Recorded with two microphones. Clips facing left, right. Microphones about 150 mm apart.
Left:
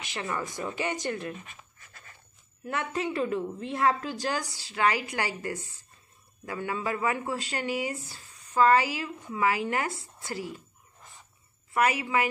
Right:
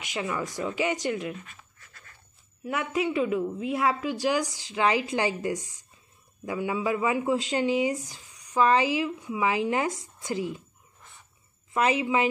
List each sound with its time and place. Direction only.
0.0 s speech: 10° right (ahead or behind)
2.6 s speech: 10° right (ahead or behind)
11.7 s a woman's voice: 20° right (ahead or behind)